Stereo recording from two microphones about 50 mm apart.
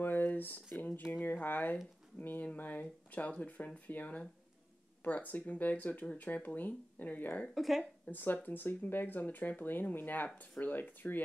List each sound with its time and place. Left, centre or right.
0.0 s a sound: left
1.1 s speech: left
7.4 s speech: centre
8.1 s speech: left